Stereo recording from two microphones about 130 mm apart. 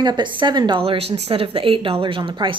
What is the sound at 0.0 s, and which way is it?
A woman's voice, 35° right (ahead or behind).